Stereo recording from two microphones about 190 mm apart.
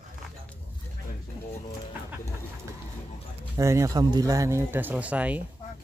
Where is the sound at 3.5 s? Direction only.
15° right (ahead or behind).